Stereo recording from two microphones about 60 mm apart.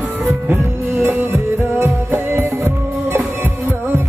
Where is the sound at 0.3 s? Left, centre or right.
Right.